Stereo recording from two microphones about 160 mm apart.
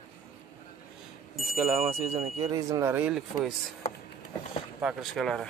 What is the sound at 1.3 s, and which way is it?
Chime, 5° right (ahead or behind).